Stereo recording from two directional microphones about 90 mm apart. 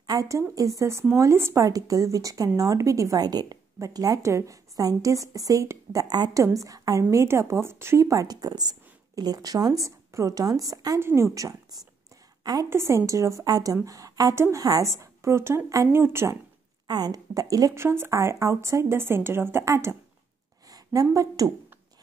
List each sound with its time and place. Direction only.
0.0 s a woman's voice: 45° right (ahead or behind)
6.0 s a woman's voice: 50° right (ahead or behind)
6.3 s a woman's voice: 35° right (ahead or behind)
11.0 s a woman's voice: 30° right (ahead or behind)
12.6 s a woman's voice: 30° right (ahead or behind)
16.8 s a woman's voice: 50° right (ahead or behind)